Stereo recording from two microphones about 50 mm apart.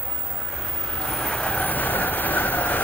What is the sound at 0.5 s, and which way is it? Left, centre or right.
Vehicle, centre.